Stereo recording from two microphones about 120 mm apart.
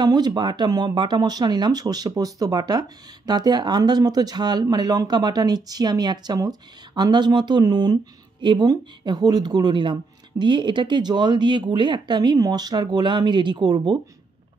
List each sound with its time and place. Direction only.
0.0 s speech: 35° right (ahead or behind)